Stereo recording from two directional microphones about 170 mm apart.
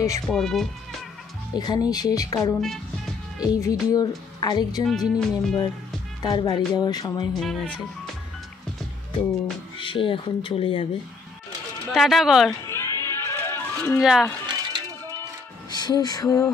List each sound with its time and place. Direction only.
0.3 s speech: 5° left (ahead or behind)
1.6 s speech: 25° left (ahead or behind)
2.6 s music: centre (ahead or behind)
3.3 s speech: 20° left (ahead or behind)
4.8 s speech: centre (ahead or behind)
6.2 s speech: 25° left (ahead or behind)
7.3 s speech: 5° left (ahead or behind)
9.8 s speech: 30° left (ahead or behind)
11.9 s speech: centre (ahead or behind)
12.6 s music: 15° left (ahead or behind)
13.9 s speech: centre (ahead or behind)
14.4 s music: 25° right (ahead or behind)
15.7 s a sound: 25° left (ahead or behind)